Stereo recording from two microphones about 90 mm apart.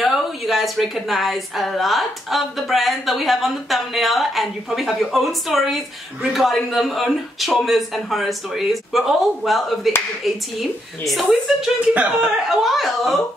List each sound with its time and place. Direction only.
0.0 s speech: centre (ahead or behind)
11.9 s speech: 15° right (ahead or behind)
12.4 s speech: centre (ahead or behind)